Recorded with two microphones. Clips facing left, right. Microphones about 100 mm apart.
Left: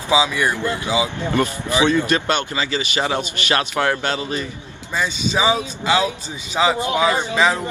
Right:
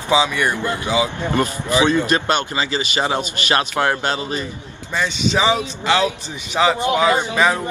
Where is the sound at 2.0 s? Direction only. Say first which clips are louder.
Right 1 dB; 20° right (ahead or behind).